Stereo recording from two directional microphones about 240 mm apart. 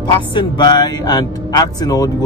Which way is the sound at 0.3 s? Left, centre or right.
Centre.